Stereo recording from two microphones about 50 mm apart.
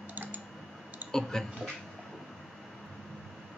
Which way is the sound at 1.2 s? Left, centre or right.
Centre.